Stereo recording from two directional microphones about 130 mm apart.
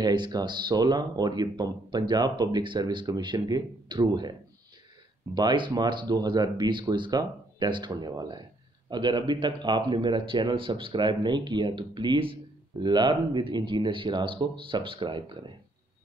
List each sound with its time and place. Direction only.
0.0 s speech: 35° right (ahead or behind)
5.3 s speech: 35° right (ahead or behind)